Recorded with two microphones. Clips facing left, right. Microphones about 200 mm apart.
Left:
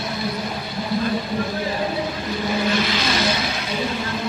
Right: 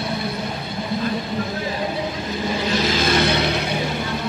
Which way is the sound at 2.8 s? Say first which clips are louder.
Right 3 dB; 50° right (ahead or behind).